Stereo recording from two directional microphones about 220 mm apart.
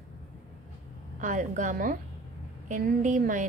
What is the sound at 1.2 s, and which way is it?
A woman's voice, 35° right (ahead or behind).